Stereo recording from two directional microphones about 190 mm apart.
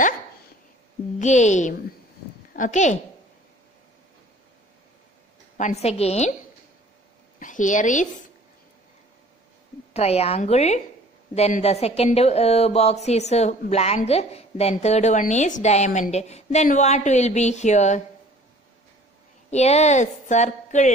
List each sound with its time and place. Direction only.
1.2 s a woman's voice: 40° left (ahead or behind)
5.6 s speech: 35° left (ahead or behind)
7.3 s a woman's voice: 40° left (ahead or behind)
9.9 s speech: 35° left (ahead or behind)
19.5 s speech: 35° left (ahead or behind)